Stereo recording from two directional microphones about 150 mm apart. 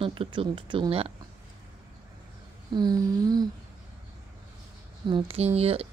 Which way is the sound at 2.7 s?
25° right (ahead or behind).